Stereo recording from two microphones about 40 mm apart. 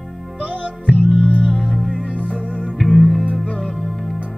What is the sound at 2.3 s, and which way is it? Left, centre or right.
Music, left.